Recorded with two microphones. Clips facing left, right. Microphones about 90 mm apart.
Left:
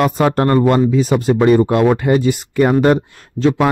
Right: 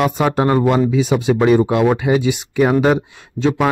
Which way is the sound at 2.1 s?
45° left (ahead or behind).